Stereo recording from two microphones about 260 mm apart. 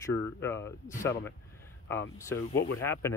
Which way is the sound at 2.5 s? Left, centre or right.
Left.